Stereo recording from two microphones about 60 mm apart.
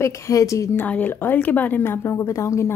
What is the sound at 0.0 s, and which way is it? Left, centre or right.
Speech, left.